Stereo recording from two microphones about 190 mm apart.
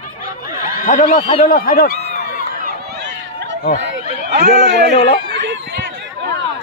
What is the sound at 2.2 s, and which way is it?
Run, 50° left (ahead or behind).